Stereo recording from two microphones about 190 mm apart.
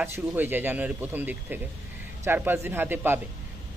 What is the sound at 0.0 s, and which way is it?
Speech, 10° right (ahead or behind).